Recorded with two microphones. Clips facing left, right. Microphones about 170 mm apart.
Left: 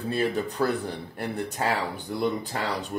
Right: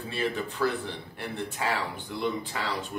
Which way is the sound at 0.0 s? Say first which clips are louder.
Left 4 dB; 40° left (ahead or behind).